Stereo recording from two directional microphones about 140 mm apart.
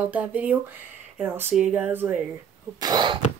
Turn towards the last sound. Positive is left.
turn(degrees=-30)  # may be behind; listen again after turning